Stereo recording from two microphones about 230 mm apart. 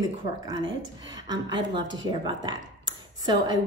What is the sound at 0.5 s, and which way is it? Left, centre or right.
Speech, centre.